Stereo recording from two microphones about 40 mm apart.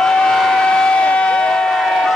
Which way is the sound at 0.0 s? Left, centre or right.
Centre.